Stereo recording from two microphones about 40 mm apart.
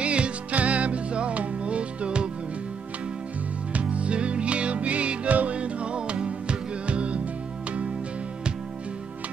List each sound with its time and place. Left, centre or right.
0.0 s music: right
3.7 s music: right